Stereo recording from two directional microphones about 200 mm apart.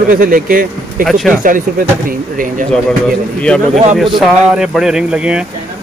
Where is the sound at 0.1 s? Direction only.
45° right (ahead or behind).